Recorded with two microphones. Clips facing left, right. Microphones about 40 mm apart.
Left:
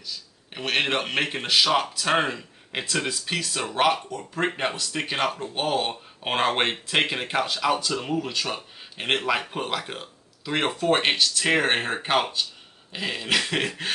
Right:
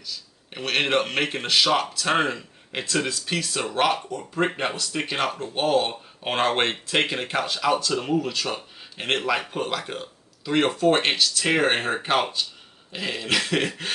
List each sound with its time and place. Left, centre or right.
0.0 s speech: centre